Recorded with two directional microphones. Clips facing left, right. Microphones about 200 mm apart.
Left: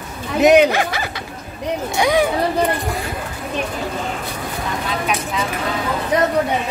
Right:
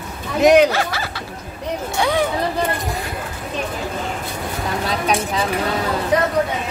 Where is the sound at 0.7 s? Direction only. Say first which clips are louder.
Left 2 dB; 15° left (ahead or behind).